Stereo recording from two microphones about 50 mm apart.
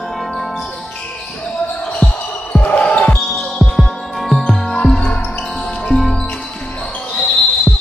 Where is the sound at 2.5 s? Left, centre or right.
Left.